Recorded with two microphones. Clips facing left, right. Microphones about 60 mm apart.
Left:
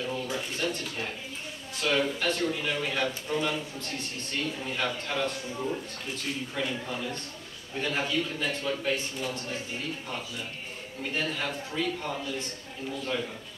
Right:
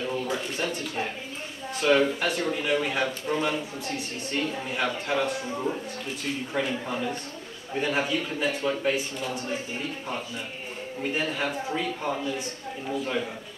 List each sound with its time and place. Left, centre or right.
0.0 s a sound: centre
1.8 s a man's voice: centre
6.6 s a man's voice: centre
11.0 s a man's voice: centre